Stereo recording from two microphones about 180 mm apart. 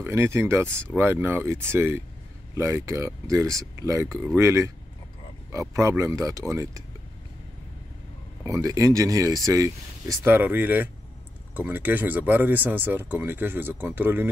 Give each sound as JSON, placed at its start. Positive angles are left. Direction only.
{"t": 0.0, "sound": "speech", "side_deg": -15}
{"t": 8.5, "sound": "speech", "side_deg": -20}